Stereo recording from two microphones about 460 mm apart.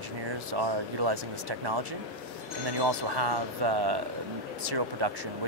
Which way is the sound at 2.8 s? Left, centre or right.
Right.